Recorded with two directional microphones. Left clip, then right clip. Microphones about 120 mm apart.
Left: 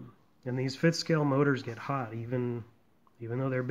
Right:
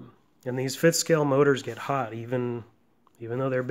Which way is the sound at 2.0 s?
60° right (ahead or behind).